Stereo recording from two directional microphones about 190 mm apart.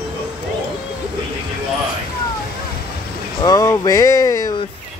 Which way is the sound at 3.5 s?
20° left (ahead or behind).